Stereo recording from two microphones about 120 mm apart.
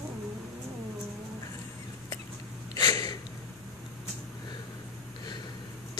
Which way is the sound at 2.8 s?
35° left (ahead or behind).